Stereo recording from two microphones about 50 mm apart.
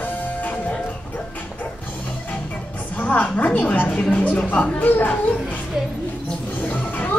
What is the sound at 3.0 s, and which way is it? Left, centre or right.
A woman's voice, left.